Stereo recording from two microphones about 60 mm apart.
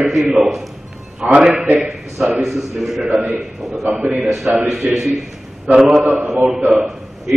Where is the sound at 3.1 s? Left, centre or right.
Centre.